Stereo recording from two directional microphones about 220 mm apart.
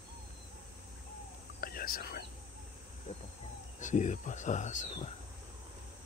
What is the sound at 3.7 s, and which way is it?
Speech, 35° left (ahead or behind).